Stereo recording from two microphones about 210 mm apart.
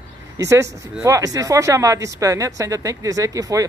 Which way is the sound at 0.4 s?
15° right (ahead or behind).